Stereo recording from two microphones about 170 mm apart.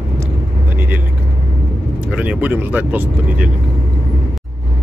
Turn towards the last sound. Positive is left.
turn(degrees=-10)  # may be behind; listen again after turning